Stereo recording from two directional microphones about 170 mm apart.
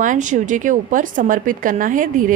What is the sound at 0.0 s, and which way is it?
A woman's voice, 50° right (ahead or behind).